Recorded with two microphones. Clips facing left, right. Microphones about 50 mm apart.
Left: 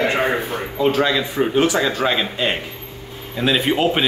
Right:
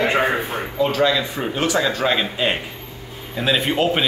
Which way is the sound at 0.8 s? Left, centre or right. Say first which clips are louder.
Left 2 dB; centre.